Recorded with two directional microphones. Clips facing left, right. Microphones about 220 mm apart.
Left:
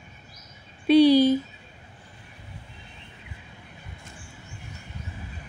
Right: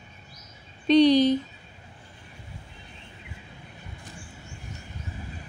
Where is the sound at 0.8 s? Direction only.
10° left (ahead or behind).